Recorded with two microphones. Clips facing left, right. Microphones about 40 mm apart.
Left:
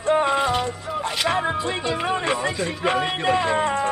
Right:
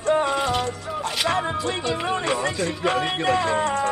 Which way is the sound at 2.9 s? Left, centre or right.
Centre.